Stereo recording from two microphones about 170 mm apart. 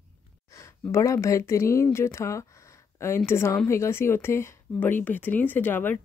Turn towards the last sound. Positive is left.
turn(degrees=10)  # may be behind; listen again after turning